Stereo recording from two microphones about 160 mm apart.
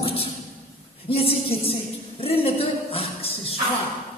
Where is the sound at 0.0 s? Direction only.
40° left (ahead or behind).